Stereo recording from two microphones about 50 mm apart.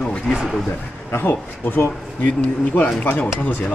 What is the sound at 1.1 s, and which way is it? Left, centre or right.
Speech, left.